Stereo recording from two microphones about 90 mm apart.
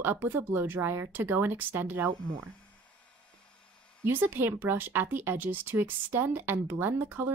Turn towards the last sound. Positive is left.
turn(degrees=-25)  # may be behind; listen again after turning